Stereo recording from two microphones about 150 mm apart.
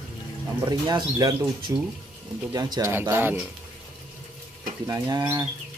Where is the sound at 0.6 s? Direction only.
25° right (ahead or behind).